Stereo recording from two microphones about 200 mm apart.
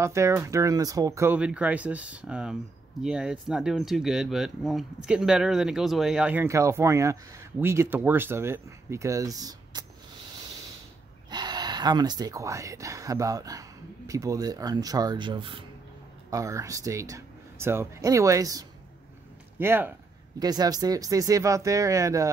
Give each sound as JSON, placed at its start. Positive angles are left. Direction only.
{"t": 0.0, "sound": "speech", "side_deg": -15}
{"t": 11.2, "sound": "speech", "side_deg": -20}